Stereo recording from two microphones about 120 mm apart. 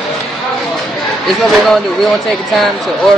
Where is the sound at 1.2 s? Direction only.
Centre (ahead or behind).